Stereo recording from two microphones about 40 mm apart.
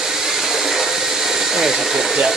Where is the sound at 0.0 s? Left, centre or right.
Centre.